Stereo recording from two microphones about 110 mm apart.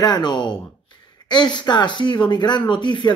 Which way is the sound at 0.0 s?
40° left (ahead or behind).